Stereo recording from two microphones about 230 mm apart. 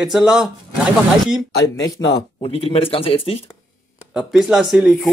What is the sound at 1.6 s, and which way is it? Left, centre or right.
A man's voice, centre.